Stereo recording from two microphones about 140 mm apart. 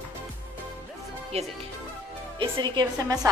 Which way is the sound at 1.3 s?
45° right (ahead or behind).